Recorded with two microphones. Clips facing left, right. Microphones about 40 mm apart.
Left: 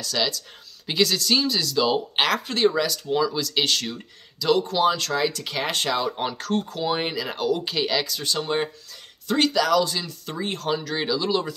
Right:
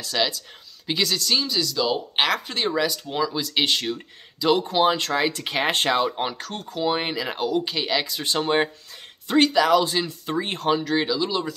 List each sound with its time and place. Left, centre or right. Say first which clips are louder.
0.0 s speech: right 1 dB; centre
0.8 s speech: left 2 dB; centre; by 6.0 s right
6.0 s speech: even; centre
7.5 s speech: right 1 dB; centre; by 8.6 s right
9.4 s speech: right 2 dB; right
10.8 s speech: right 5 dB; centre
11.1 s speech: left 1 dB; centre